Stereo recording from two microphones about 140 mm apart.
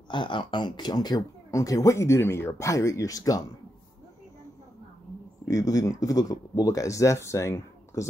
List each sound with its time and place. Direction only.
0.1 s speech: 35° left (ahead or behind)
5.4 s speech: 25° left (ahead or behind)